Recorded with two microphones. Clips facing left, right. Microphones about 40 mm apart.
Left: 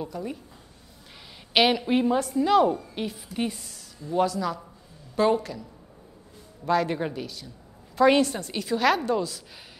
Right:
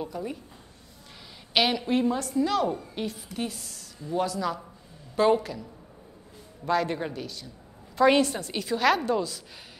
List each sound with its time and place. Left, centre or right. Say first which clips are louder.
0.0 s a woman's voice: even; centre
1.5 s a woman's voice: left 3 dB; centre
2.7 s a woman's voice: left 2 dB; centre